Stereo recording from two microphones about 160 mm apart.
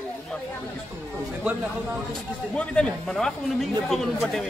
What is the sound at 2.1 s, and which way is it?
Speech, 5° left (ahead or behind).